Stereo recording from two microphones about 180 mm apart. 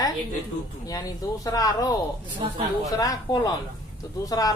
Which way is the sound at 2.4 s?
25° right (ahead or behind).